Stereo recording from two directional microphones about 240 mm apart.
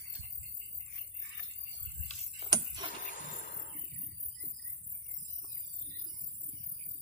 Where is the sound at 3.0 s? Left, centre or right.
Left.